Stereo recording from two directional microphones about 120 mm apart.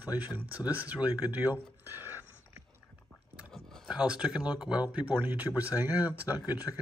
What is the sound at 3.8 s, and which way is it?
Speech, 10° right (ahead or behind).